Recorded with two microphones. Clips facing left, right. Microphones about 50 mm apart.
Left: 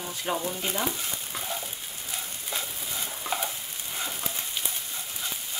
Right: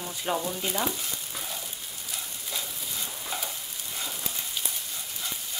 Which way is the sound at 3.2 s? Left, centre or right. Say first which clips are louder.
Left 6 dB; left.